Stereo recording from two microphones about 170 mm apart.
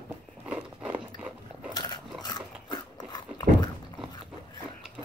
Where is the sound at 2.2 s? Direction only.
25° left (ahead or behind).